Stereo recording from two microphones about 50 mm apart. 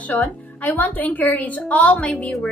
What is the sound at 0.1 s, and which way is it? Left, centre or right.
A woman's voice, left.